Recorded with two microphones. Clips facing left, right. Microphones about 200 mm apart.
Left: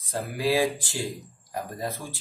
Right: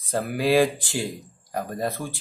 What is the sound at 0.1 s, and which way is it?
Speech, 65° right (ahead or behind).